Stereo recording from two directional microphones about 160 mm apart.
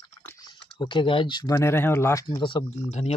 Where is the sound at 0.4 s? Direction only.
30° left (ahead or behind).